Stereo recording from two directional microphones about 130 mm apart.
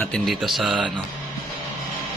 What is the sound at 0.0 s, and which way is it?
Speech, 5° left (ahead or behind).